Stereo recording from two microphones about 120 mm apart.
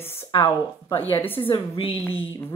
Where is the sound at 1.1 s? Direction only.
15° left (ahead or behind).